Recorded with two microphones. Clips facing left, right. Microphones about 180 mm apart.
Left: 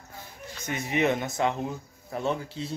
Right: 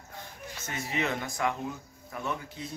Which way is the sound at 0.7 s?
20° left (ahead or behind).